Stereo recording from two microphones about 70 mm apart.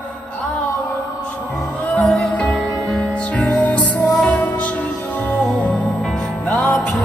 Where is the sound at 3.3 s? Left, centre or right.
Centre.